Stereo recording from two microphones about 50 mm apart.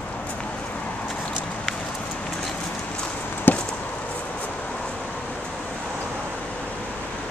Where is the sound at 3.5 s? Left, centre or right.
Left.